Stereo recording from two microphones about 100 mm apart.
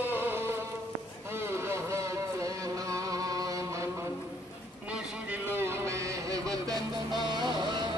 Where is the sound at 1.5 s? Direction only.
30° right (ahead or behind).